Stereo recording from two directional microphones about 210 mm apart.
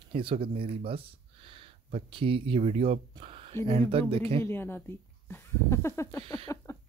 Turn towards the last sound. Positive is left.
turn(degrees=15)  # may be behind; listen again after turning